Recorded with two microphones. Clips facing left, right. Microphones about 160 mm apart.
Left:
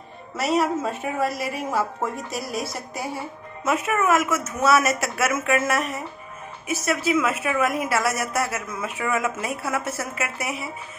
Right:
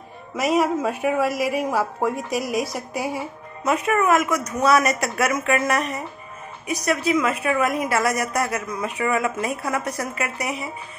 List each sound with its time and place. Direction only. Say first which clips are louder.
0.4 s a woman's voice: right 2 dB; 10° right (ahead or behind)
3.6 s a woman's voice: right 2 dB; centre (ahead or behind)